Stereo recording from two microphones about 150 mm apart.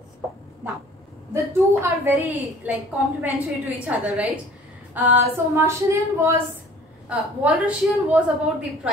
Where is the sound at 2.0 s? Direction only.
10° right (ahead or behind).